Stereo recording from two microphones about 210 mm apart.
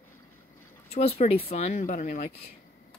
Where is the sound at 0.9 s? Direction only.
30° left (ahead or behind).